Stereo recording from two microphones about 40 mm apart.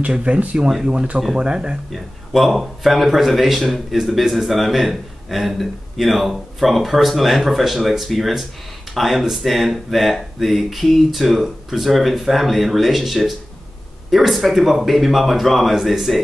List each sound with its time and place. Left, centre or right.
0.0 s speech: right
1.4 s speech: right
1.9 s speech: centre